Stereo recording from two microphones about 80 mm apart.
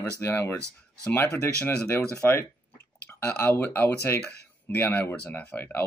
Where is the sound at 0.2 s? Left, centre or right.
Left.